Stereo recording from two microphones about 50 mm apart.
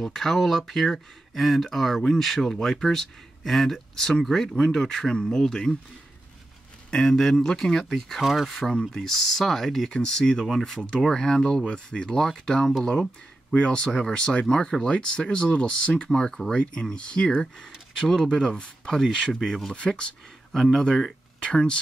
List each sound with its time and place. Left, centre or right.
0.0 s speech: centre
7.1 s speech: centre
8.2 s speech: centre
8.5 s speech: centre
14.9 s speech: left
19.7 s speech: left